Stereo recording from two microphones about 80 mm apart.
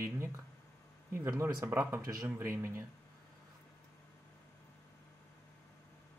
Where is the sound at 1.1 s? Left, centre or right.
Right.